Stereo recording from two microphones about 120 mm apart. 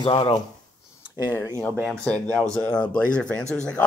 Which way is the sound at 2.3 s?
5° left (ahead or behind).